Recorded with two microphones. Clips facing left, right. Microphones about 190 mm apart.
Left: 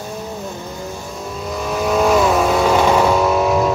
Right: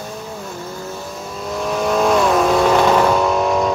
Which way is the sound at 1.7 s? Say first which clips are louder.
Left 1 dB; centre (ahead or behind).